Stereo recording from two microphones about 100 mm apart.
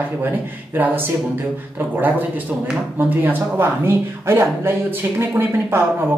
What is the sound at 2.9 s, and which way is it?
Speech, 20° right (ahead or behind).